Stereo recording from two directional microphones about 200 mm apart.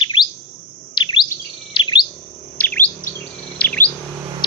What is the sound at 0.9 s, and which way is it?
Chirp, 20° left (ahead or behind).